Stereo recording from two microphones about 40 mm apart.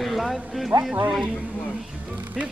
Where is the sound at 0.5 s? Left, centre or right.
Centre.